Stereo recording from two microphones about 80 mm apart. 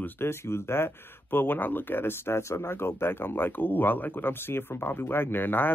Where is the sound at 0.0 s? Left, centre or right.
Left.